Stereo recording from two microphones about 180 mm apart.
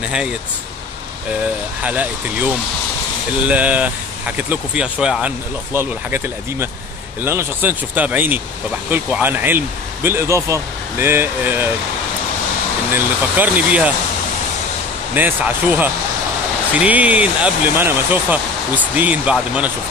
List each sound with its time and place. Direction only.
1.8 s speech: 10° right (ahead or behind)
12.9 s speech: 10° right (ahead or behind)
15.1 s speech: 10° right (ahead or behind)